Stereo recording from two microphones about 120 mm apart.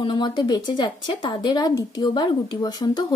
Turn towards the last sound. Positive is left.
turn(degrees=35)  # may be behind; listen again after turning